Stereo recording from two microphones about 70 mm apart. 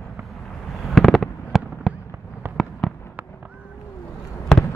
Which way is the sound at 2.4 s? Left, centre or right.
Right.